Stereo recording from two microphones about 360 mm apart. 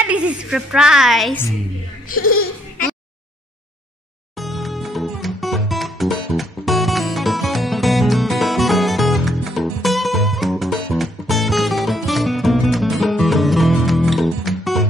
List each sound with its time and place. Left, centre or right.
0.0 s a woman's voice: centre
2.0 s speech: left
4.4 s music: centre